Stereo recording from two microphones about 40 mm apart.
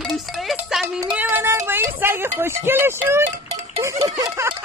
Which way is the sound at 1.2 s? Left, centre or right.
Right.